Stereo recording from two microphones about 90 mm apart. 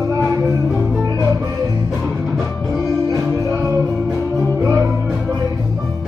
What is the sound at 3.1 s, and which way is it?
Music, 40° right (ahead or behind).